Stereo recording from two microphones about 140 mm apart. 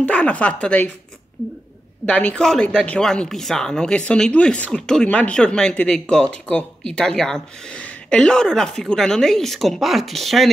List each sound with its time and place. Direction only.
0.0 s speech: 10° left (ahead or behind)
2.0 s a woman's voice: 10° left (ahead or behind)